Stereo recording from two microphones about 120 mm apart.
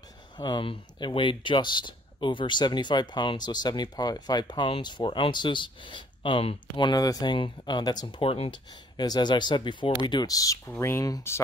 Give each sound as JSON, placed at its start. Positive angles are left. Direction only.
{"t": 0.4, "sound": "speech", "side_deg": 40}
{"t": 8.2, "sound": "speech", "side_deg": 50}
{"t": 8.9, "sound": "speech", "side_deg": 35}